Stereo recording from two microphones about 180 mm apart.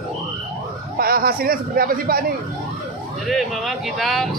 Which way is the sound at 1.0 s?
55° right (ahead or behind).